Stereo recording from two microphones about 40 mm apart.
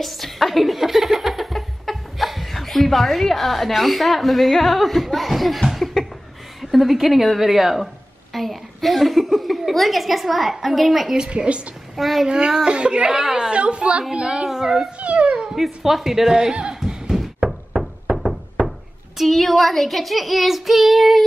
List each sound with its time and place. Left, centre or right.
0.0 s speech: centre
6.6 s a woman's voice: centre
11.2 s a woman's voice: right
12.0 s child singing: centre
12.3 s a woman's voice: right
13.1 s a woman's voice: centre
13.5 s a woman's voice: right
14.5 s a woman's voice: centre
15.0 s a sound: right
15.5 s child singing: centre
16.3 s speech: centre
17.1 s knock: centre
19.1 s child singing: centre